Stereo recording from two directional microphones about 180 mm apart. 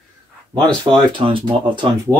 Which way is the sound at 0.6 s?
25° right (ahead or behind).